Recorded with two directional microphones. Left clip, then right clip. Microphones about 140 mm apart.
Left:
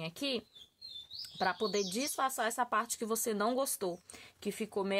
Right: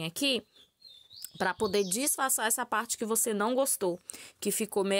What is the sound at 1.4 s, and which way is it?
Speech, 70° right (ahead or behind).